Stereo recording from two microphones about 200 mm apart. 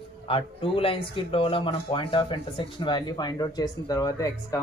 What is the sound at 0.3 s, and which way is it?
Speech, 25° left (ahead or behind).